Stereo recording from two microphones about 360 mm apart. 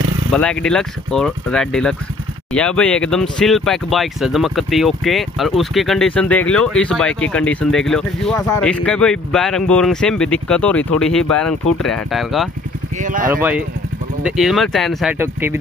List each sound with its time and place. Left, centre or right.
0.3 s speech: centre
12.9 s speech: right
13.3 s speech: centre